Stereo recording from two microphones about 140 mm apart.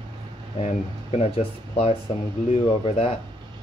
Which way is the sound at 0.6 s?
50° left (ahead or behind).